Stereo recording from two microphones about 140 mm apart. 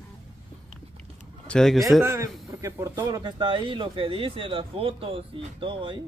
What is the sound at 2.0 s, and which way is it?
A man's voice, 20° right (ahead or behind).